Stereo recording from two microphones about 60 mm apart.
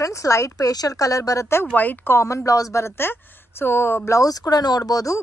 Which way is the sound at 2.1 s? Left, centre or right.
Left.